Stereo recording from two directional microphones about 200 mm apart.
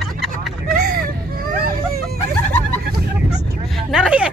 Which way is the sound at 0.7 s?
45° right (ahead or behind).